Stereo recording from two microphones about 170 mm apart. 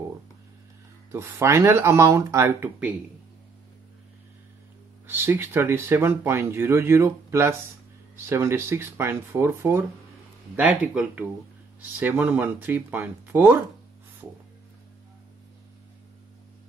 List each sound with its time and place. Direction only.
1.1 s speech: 15° right (ahead or behind)
5.0 s speech: 15° right (ahead or behind)